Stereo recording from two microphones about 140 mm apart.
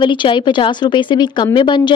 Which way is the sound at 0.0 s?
35° left (ahead or behind).